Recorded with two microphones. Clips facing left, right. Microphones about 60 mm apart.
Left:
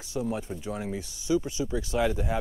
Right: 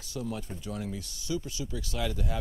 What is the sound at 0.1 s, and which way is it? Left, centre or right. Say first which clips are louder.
Speech: left 5 dB; left.